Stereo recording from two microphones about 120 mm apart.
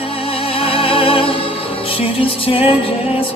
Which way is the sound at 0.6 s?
50° left (ahead or behind).